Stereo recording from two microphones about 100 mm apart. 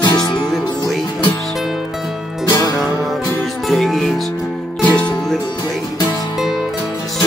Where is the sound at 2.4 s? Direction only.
40° left (ahead or behind).